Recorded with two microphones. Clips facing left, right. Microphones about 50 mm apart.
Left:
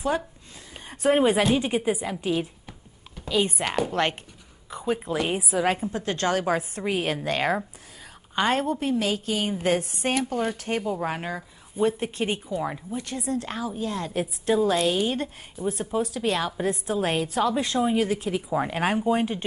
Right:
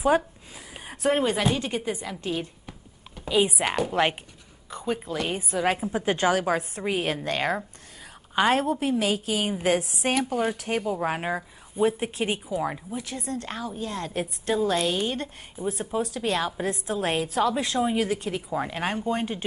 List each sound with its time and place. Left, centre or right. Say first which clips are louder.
0.1 s speech: right 5 dB; right
0.7 s a sound: left 2 dB; centre
1.1 s a woman's voice: left 5 dB; centre
3.2 s a woman's voice: right 2 dB; centre
6.3 s a woman's voice: even; centre
11.2 s a sound: right 4 dB; centre
11.8 s a woman's voice: even; centre